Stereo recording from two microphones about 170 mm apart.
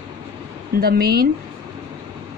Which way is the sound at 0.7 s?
65° right (ahead or behind).